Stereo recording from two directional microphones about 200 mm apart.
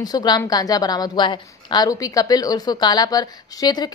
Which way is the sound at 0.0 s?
20° left (ahead or behind).